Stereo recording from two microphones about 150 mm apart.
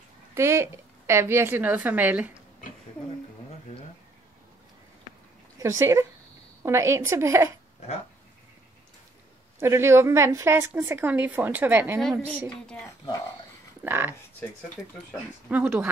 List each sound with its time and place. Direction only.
0.3 s speech: 20° right (ahead or behind)
5.6 s a woman's voice: 20° right (ahead or behind)
9.6 s a woman's voice: 15° right (ahead or behind)
13.8 s a woman's voice: 15° right (ahead or behind)
14.8 s speech: 15° left (ahead or behind)
15.5 s a woman's voice: 10° right (ahead or behind)